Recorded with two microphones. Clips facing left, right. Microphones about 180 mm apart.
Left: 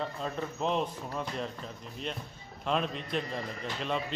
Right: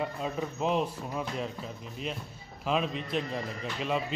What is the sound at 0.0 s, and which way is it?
A man's voice, 10° right (ahead or behind).